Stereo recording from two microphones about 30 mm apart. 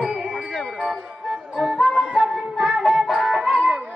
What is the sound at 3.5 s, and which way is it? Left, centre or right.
Music, right.